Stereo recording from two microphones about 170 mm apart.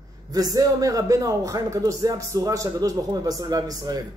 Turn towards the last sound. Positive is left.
turn(degrees=-25)  # may be behind; listen again after turning